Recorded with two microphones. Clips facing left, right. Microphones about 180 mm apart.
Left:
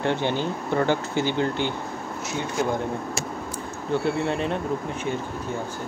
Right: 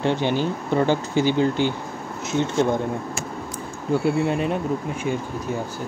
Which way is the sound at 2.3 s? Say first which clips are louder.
Right 7 dB; 25° right (ahead or behind).